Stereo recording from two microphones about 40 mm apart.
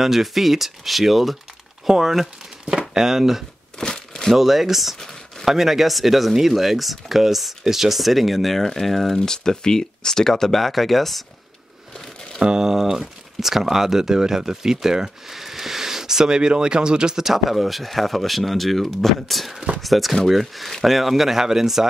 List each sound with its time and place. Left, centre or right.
0.0 s speech: centre
3.7 s crumpling: left
4.3 s speech: centre
12.4 s speech: centre